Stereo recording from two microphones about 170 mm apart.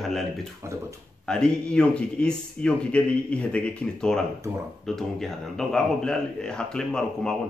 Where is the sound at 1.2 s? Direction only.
5° left (ahead or behind).